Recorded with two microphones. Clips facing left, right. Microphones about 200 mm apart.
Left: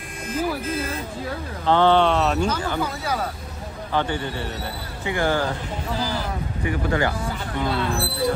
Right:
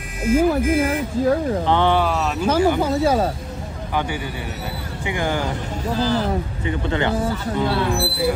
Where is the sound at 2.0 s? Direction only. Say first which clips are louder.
Left 2 dB; centre (ahead or behind).